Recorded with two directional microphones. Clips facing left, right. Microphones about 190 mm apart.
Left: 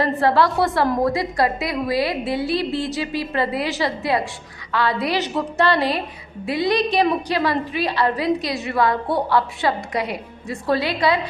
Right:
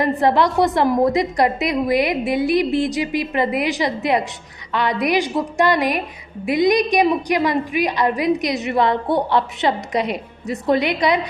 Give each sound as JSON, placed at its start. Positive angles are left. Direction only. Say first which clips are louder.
{"t": 0.0, "sound": "a woman's voice", "louder": "right 1 dB", "side_deg": -20}